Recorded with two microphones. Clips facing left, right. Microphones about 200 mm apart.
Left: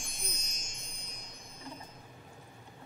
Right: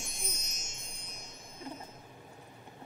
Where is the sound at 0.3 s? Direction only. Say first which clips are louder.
Right 1 dB; 5° right (ahead or behind).